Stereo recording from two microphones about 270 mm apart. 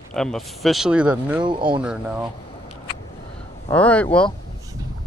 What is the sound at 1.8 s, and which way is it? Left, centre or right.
Speech, centre.